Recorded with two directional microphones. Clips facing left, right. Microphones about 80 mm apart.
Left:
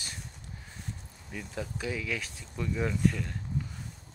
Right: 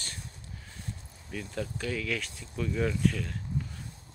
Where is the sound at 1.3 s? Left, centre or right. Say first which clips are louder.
Right 2 dB; centre.